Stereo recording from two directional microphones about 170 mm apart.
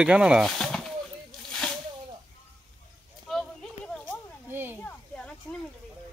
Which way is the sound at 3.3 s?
Centre (ahead or behind).